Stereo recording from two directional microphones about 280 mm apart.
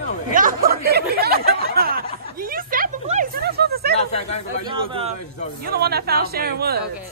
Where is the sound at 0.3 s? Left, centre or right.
Right.